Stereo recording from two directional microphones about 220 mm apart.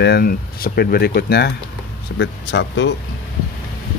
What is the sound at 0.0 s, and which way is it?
Speech, 45° left (ahead or behind).